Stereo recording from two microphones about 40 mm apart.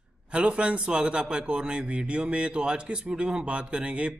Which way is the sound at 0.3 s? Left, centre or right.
Right.